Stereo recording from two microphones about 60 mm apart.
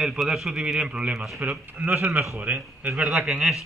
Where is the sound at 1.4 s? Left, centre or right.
Right.